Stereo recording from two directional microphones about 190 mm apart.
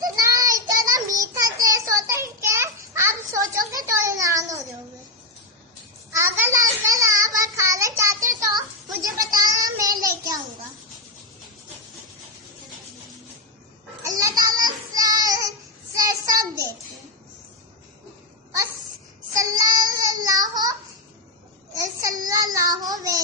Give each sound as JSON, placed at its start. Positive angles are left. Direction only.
{"t": 0.0, "sound": "child singing", "side_deg": -20}
{"t": 6.1, "sound": "child singing", "side_deg": -10}
{"t": 14.0, "sound": "child singing", "side_deg": -20}
{"t": 19.3, "sound": "child singing", "side_deg": -20}
{"t": 21.7, "sound": "child singing", "side_deg": -20}